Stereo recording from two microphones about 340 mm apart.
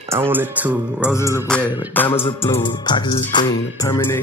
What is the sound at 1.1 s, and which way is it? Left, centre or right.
Music, centre.